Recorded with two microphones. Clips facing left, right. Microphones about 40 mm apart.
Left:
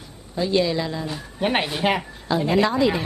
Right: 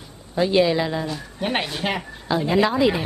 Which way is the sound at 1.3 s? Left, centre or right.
Centre.